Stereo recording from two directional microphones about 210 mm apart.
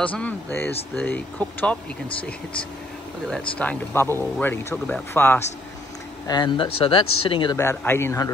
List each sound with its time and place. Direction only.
0.0 s speech: 5° left (ahead or behind)
3.3 s speech: 5° left (ahead or behind)
6.2 s speech: 20° left (ahead or behind)